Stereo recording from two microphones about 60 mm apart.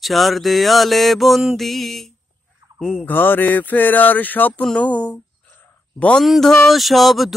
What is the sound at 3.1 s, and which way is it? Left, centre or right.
Speech, left.